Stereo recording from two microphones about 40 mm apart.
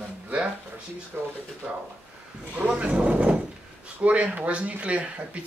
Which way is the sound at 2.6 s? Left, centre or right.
Right.